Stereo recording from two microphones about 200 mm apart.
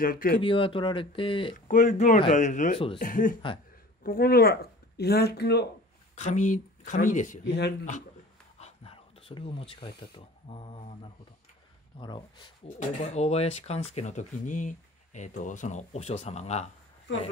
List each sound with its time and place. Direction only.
0.0 s speech: 45° left (ahead or behind)
0.4 s speech: 25° left (ahead or behind)
1.7 s speech: 40° left (ahead or behind); by 5.7 s 55° left (ahead or behind)
6.1 s speech: 35° left (ahead or behind)
7.4 s speech: 60° left (ahead or behind)
8.5 s a sound: 30° left (ahead or behind)
10.1 s speech: 25° left (ahead or behind)
12.0 s speech: 25° left (ahead or behind)
12.6 s speech: 35° left (ahead or behind)